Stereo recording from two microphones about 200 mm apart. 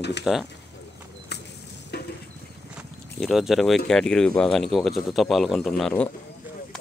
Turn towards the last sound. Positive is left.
turn(degrees=5)  # may be behind; listen again after turning